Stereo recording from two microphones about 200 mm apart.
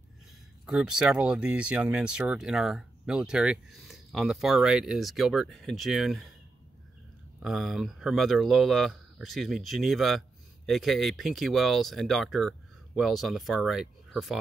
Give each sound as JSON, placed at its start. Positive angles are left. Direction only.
{"t": 0.7, "sound": "speech", "side_deg": -5}
{"t": 7.4, "sound": "speech", "side_deg": 0}